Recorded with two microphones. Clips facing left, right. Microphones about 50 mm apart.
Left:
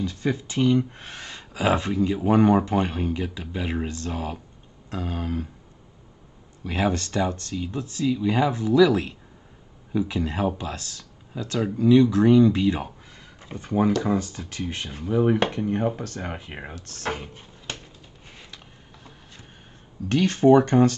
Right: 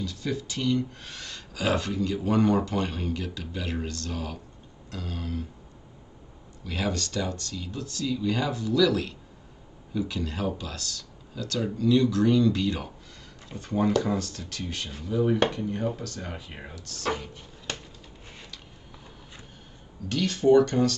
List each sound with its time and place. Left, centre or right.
0.0 s speech: left
6.6 s speech: left
14.4 s speech: left
20.1 s speech: left